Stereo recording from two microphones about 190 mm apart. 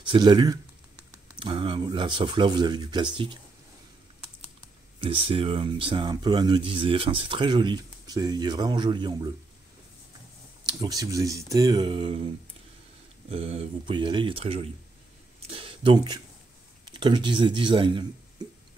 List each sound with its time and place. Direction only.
0.0 s speech: 25° right (ahead or behind)
5.0 s speech: 30° right (ahead or behind)
10.7 s speech: 20° right (ahead or behind)
13.3 s speech: 30° right (ahead or behind)
18.4 s a sound: 20° right (ahead or behind)